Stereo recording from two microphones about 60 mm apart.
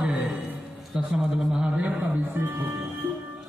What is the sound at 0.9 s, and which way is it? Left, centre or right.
Speech, centre.